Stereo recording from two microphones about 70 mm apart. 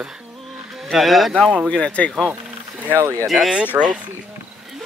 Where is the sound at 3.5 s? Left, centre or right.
Centre.